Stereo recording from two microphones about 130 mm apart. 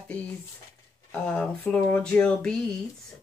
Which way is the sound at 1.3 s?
10° left (ahead or behind).